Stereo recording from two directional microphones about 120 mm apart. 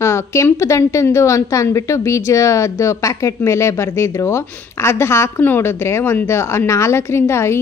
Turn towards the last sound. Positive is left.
turn(degrees=20)  # may be behind; listen again after turning